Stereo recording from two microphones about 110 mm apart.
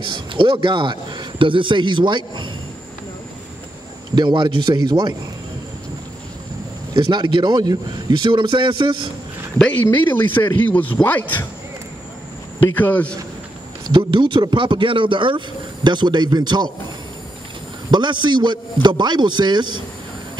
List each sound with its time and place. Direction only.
0.0 s speech: 50° right (ahead or behind)
4.1 s speech: 40° right (ahead or behind)
6.9 s speech: 45° right (ahead or behind)
9.8 s speech: 20° left (ahead or behind)
12.7 s speech: 15° left (ahead or behind)
13.9 s speech: 50° right (ahead or behind)
17.9 s speech: 45° right (ahead or behind)